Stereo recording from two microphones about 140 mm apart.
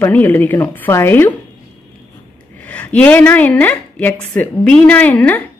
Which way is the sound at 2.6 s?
10° left (ahead or behind).